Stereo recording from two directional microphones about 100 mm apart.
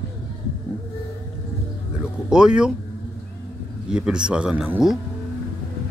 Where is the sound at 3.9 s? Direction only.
10° right (ahead or behind).